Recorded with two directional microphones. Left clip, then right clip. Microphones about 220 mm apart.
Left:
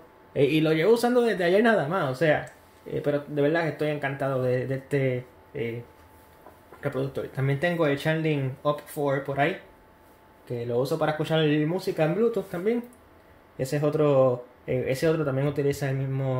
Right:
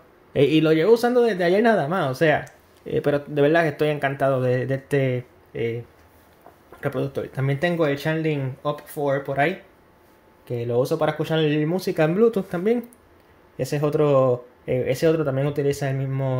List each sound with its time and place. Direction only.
0.3 s speech: 30° right (ahead or behind)
6.8 s speech: 30° right (ahead or behind)
10.5 s speech: 25° right (ahead or behind)